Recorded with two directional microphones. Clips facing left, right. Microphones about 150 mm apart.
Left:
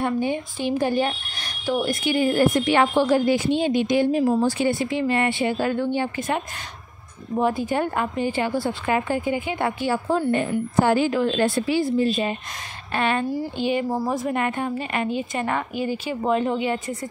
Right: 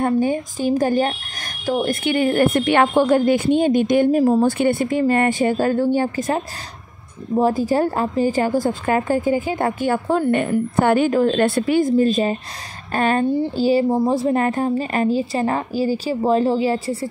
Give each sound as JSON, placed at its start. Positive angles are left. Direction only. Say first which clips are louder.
{"t": 0.0, "sound": "a woman's voice", "louder": "right 5 dB", "side_deg": -45}